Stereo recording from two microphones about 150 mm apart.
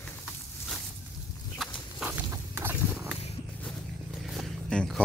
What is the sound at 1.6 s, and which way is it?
Walk, centre (ahead or behind).